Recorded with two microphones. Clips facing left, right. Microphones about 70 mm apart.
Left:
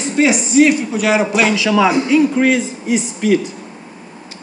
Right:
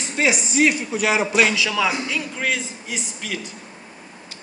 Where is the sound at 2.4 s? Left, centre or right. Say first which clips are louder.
Left 10 dB; centre.